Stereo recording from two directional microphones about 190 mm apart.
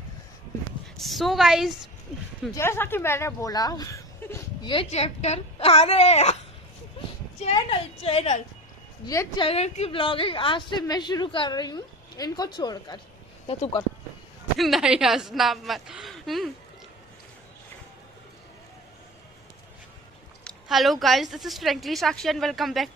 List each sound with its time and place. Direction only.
0.9 s a woman's voice: centre (ahead or behind)
2.5 s speech: 15° left (ahead or behind)
4.8 s a woman's voice: 35° left (ahead or behind)
7.5 s a woman's voice: 30° left (ahead or behind)
9.0 s a woman's voice: 20° left (ahead or behind)
9.5 s a woman's voice: 30° left (ahead or behind)
14.6 s a woman's voice: 5° right (ahead or behind)
20.4 s a woman's voice: centre (ahead or behind)